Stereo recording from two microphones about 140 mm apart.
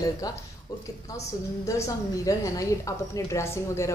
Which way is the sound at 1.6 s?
20° left (ahead or behind).